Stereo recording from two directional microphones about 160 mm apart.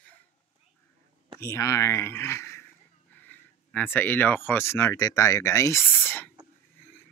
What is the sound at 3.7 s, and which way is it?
Speech, 10° left (ahead or behind).